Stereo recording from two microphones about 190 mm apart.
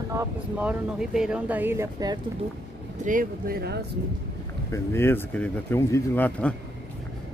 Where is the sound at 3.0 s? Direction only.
45° right (ahead or behind).